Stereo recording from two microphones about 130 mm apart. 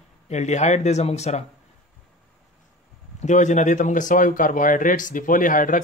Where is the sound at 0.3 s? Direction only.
60° left (ahead or behind).